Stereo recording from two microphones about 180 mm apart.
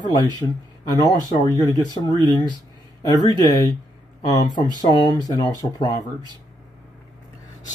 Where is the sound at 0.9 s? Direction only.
20° left (ahead or behind).